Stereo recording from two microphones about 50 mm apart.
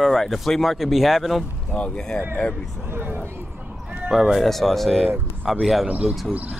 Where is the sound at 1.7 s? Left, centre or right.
Centre.